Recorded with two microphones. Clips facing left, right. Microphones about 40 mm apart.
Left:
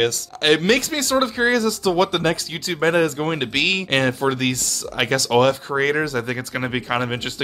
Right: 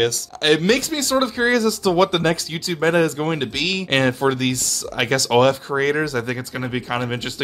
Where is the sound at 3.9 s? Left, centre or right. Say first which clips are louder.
Right 5 dB; centre.